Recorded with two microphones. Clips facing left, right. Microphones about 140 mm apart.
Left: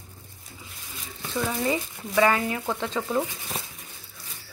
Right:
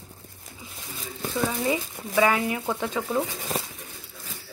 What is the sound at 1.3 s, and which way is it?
Speech, 5° right (ahead or behind).